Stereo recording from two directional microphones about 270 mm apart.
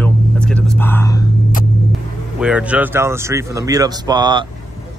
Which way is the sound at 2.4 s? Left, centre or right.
Centre.